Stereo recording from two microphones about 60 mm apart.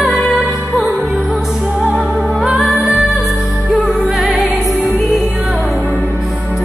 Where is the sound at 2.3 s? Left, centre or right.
Centre.